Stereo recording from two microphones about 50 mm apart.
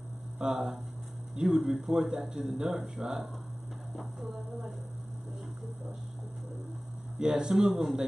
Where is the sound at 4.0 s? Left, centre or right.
Centre.